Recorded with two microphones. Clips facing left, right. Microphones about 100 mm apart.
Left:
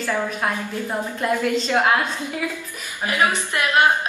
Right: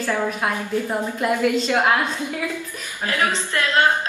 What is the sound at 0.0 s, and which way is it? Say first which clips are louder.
A woman's voice: right 1 dB; 15° right (ahead or behind).